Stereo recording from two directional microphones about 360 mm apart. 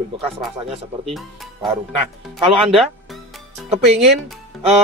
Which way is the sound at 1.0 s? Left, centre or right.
Centre.